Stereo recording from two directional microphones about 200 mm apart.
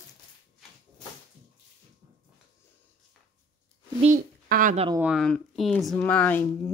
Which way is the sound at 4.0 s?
40° right (ahead or behind).